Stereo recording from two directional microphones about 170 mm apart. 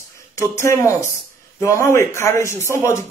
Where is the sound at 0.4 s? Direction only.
15° left (ahead or behind).